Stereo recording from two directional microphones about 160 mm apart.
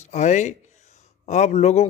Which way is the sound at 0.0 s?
45° left (ahead or behind).